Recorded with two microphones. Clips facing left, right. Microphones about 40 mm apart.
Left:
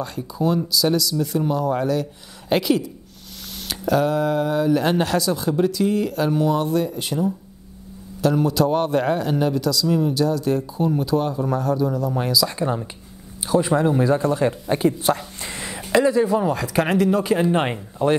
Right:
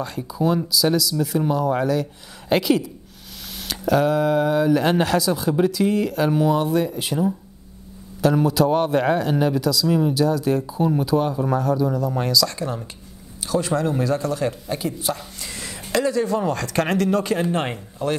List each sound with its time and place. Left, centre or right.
0.0 s speech: centre
8.2 s speech: centre
9.8 s speech: centre
10.1 s speech: centre; by 15.1 s left
15.1 s speech: left